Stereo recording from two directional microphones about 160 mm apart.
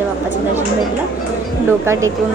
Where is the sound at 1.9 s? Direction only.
15° right (ahead or behind).